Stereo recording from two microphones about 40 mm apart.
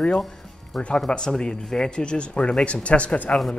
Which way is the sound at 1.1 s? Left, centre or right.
Centre.